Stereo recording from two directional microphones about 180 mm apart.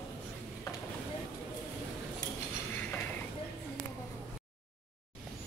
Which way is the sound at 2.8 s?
10° left (ahead or behind).